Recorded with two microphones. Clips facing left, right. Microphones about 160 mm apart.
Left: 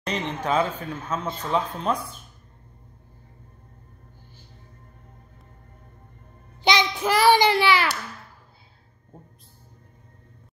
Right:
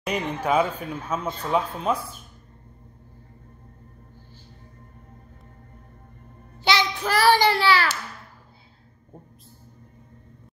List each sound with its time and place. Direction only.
0.0 s speech: 10° right (ahead or behind)
6.6 s child singing: 15° left (ahead or behind)